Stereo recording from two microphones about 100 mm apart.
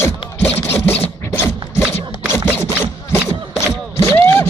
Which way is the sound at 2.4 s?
25° left (ahead or behind).